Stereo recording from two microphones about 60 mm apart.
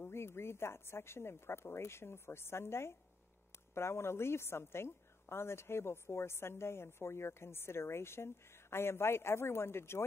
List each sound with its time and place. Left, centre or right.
0.0 s a woman's voice: left